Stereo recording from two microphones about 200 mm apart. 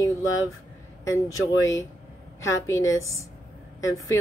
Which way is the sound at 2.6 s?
15° left (ahead or behind).